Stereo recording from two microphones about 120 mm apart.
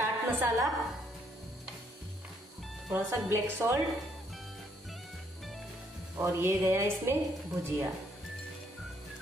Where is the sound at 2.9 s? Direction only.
20° right (ahead or behind).